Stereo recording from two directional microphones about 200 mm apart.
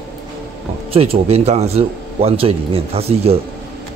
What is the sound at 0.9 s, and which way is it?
Speech, 30° right (ahead or behind).